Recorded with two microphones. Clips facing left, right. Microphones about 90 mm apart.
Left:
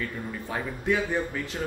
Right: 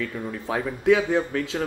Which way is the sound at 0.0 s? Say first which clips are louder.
Right 4 dB; 90° right.